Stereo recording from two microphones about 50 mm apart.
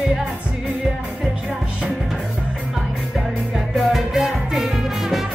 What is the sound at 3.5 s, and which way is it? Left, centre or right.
Music, centre.